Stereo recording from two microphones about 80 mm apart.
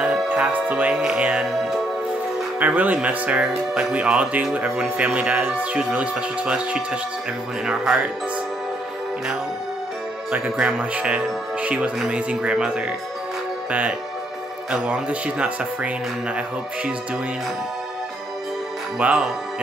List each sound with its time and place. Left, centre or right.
0.0 s music: centre
1.0 s speech: centre
2.6 s speech: right
10.3 s speech: centre
18.9 s speech: centre